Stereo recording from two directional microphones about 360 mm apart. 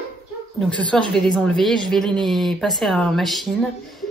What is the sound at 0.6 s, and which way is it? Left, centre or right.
Speech, centre.